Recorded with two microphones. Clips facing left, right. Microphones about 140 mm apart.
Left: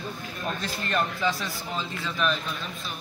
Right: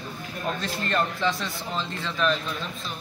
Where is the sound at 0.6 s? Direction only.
5° left (ahead or behind).